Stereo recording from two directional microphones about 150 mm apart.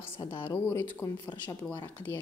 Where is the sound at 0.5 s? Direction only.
15° left (ahead or behind).